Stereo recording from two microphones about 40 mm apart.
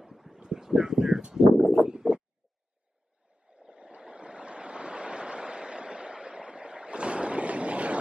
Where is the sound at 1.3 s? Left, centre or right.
Centre.